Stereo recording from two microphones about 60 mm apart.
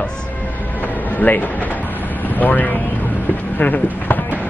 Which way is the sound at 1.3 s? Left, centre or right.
Left.